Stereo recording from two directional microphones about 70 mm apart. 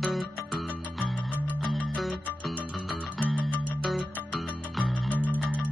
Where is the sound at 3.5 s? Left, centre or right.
Left.